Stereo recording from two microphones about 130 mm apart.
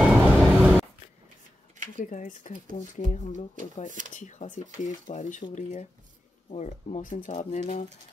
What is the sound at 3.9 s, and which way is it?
Speech, 80° right.